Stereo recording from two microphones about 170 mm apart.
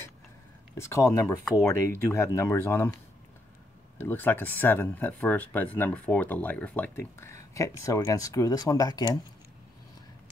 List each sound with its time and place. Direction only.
0.7 s speech: 15° left (ahead or behind)
4.0 s speech: 10° left (ahead or behind)